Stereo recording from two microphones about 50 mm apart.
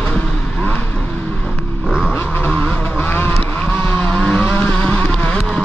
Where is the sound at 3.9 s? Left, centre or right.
Left.